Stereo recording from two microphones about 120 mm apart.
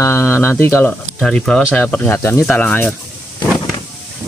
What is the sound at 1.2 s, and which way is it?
Speech, 5° left (ahead or behind).